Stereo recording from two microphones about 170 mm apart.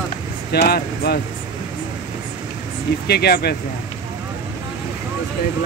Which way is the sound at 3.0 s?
70° left (ahead or behind).